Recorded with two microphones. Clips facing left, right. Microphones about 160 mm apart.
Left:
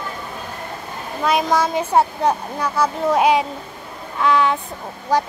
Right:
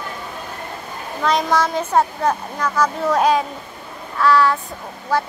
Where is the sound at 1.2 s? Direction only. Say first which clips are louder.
Even; 10° left (ahead or behind).